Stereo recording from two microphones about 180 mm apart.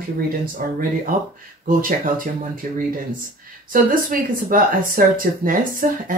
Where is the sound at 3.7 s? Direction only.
50° right (ahead or behind).